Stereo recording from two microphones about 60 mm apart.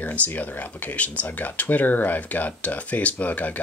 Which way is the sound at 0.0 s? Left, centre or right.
Left.